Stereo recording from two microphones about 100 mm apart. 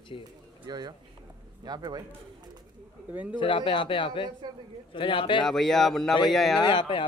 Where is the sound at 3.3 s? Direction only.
55° left (ahead or behind).